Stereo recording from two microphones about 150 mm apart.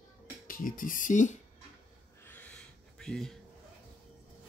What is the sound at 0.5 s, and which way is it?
Speech, 65° left (ahead or behind).